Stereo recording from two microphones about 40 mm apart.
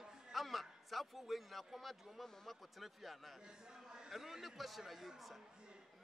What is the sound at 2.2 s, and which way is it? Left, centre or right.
Speech, centre.